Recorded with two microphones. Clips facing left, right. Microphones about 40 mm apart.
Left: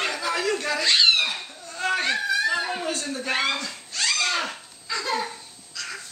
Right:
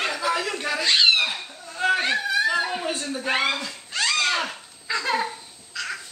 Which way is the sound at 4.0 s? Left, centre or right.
Centre.